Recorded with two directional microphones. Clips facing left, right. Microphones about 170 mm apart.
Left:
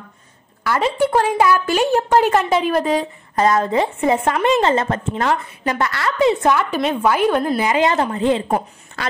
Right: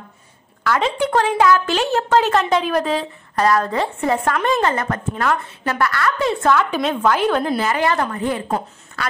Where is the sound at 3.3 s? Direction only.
20° left (ahead or behind).